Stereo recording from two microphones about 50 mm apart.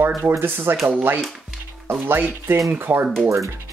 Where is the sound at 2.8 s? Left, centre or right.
Right.